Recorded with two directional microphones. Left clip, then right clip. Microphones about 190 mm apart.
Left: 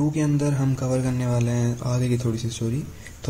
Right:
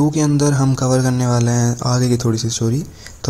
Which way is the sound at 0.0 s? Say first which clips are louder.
Right 8 dB; 35° right (ahead or behind).